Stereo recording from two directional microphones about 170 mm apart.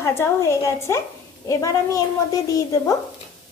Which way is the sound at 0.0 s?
15° left (ahead or behind).